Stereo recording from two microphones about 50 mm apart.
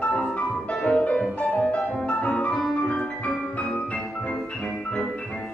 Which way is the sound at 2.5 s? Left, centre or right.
Centre.